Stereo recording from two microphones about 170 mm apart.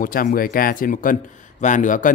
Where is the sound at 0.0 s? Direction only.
55° left (ahead or behind).